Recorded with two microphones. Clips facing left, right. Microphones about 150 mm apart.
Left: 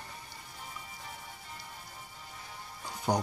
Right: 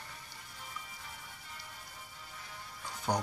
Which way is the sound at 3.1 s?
20° left (ahead or behind).